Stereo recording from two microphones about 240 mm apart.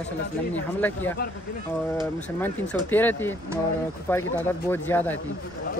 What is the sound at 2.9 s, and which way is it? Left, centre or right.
Speech, centre.